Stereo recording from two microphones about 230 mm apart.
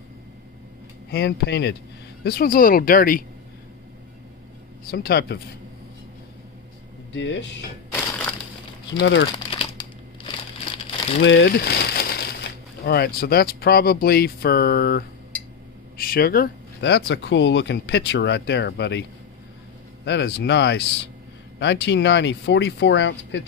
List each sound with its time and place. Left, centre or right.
1.1 s speech: left
4.8 s speech: left
7.2 s speech: left
9.0 s speech: left
9.5 s crumpling: left
11.2 s a sound: left
12.8 s speech: left
20.1 s speech: left